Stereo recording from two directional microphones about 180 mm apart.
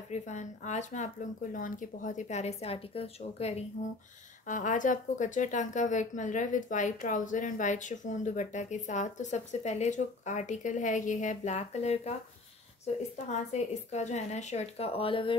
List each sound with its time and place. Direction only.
0.1 s a woman's voice: 40° left (ahead or behind)
13.3 s speech: 40° left (ahead or behind)